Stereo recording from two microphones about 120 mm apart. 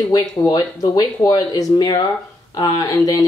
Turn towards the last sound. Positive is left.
turn(degrees=30)  # may be behind; listen again after turning